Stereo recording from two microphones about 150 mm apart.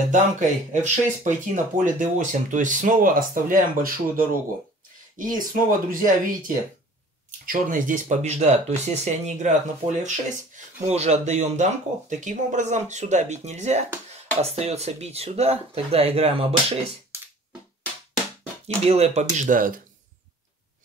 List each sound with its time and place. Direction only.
0.1 s speech: 55° right (ahead or behind)
18.9 s speech: 45° right (ahead or behind); by 19.8 s 65° right (ahead or behind)